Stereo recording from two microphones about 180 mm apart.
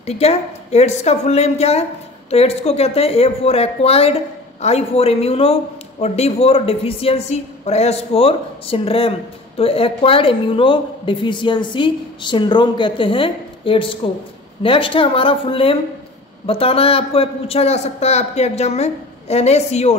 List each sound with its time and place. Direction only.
0.0 s a woman's voice: 35° left (ahead or behind)